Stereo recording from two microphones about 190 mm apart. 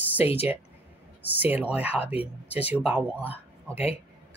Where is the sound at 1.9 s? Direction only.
30° left (ahead or behind).